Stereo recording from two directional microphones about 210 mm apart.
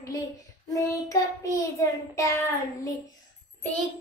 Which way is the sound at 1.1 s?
15° left (ahead or behind).